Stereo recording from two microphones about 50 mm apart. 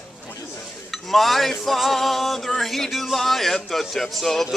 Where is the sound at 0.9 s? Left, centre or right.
Centre.